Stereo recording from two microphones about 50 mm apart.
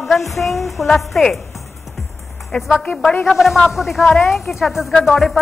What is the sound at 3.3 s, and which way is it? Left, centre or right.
Speech, centre.